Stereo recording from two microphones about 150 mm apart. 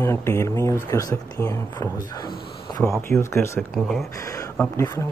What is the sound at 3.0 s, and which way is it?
Speech, 15° left (ahead or behind).